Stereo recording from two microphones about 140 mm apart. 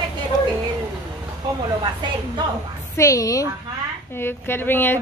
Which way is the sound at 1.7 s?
35° right (ahead or behind).